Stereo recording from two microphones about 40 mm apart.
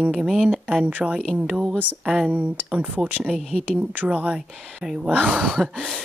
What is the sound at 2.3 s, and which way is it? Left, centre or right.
Speech, right.